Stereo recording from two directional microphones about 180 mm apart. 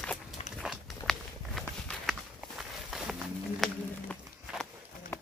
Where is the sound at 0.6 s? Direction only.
Centre (ahead or behind).